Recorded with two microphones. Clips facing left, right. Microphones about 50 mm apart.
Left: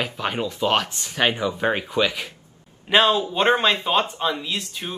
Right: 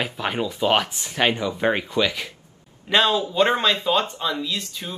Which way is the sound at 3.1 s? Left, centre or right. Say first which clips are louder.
Left 1 dB; left.